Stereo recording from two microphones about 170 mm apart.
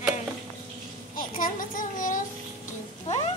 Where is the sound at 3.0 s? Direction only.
35° left (ahead or behind).